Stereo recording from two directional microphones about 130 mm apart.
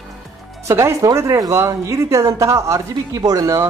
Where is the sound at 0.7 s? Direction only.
20° right (ahead or behind).